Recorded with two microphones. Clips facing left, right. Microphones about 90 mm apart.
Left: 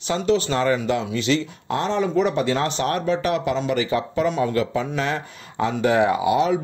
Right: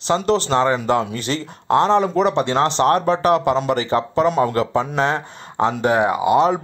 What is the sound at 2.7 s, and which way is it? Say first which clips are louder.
Speech: right 6 dB; 40° right (ahead or behind).